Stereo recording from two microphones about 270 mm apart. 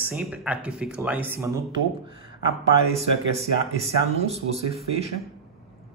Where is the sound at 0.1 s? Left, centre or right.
Centre.